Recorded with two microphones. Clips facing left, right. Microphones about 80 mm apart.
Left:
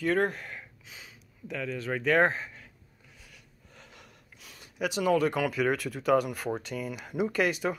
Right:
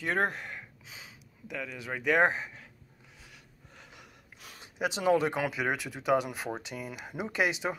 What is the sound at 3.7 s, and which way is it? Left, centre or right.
Gasp, centre.